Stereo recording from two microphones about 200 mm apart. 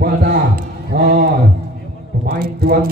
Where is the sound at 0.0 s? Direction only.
50° right (ahead or behind).